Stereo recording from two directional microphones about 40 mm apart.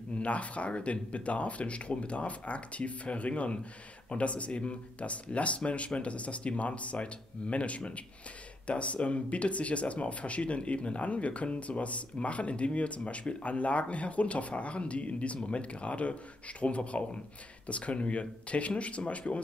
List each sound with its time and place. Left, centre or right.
0.2 s speech: left